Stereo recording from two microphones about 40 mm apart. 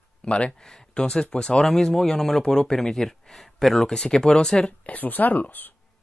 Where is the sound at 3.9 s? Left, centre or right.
Centre.